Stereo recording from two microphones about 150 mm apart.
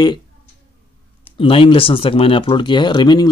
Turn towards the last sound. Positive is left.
turn(degrees=30)  # may be behind; listen again after turning